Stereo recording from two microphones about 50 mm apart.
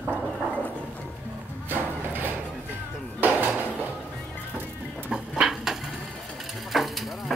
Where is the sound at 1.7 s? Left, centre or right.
Right.